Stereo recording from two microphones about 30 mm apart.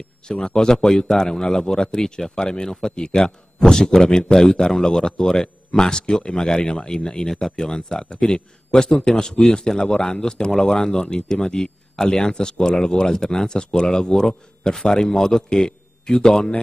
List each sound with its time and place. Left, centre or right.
0.3 s a man's voice: left
4.3 s a man's voice: centre